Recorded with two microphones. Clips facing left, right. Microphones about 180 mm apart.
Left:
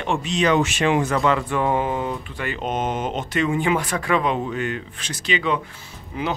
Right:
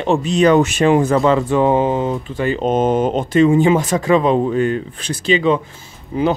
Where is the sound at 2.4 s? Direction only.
35° right (ahead or behind).